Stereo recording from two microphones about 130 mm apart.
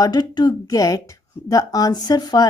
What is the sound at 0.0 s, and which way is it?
Speech, 30° left (ahead or behind).